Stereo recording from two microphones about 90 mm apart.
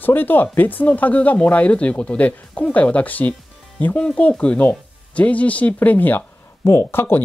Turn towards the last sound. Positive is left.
turn(degrees=25)  # may be behind; listen again after turning